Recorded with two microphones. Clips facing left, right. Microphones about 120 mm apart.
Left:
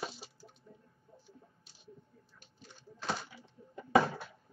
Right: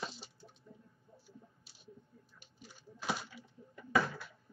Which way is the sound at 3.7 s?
25° left (ahead or behind).